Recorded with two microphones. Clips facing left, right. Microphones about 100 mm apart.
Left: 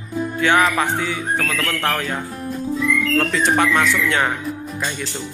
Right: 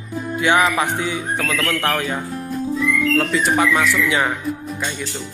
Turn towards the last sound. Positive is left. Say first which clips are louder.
# even
turn(degrees=-5)  # may be behind; listen again after turning